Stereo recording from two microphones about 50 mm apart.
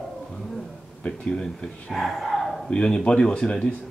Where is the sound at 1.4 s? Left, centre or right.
Centre.